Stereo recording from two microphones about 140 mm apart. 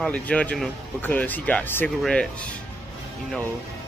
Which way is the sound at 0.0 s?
10° left (ahead or behind).